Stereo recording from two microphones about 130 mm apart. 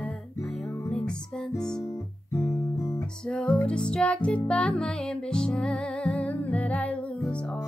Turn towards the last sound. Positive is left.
turn(degrees=10)  # may be behind; listen again after turning